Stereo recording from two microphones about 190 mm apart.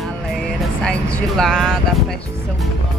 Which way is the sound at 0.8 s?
Centre (ahead or behind).